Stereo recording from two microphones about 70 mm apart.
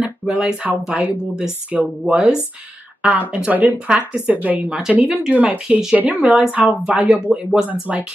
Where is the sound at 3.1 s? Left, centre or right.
Right.